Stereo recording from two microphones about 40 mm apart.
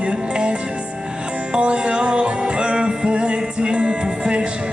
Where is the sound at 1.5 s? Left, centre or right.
Right.